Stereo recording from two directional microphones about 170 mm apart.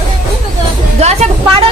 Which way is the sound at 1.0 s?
40° right (ahead or behind).